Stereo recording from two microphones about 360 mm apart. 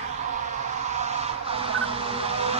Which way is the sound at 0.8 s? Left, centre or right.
Centre.